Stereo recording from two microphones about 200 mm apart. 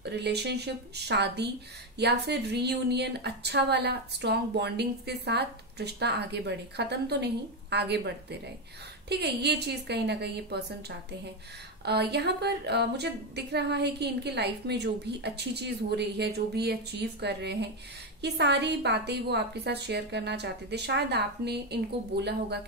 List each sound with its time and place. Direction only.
0.0 s a woman's voice: 55° right (ahead or behind)